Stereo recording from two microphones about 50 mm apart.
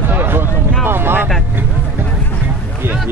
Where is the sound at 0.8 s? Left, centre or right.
Right.